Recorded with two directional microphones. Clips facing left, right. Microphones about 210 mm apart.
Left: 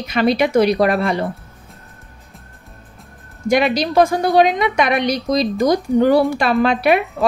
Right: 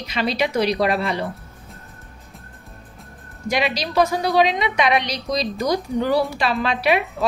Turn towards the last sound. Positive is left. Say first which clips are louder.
# left 5 dB
turn(degrees=50)  # may be behind; listen again after turning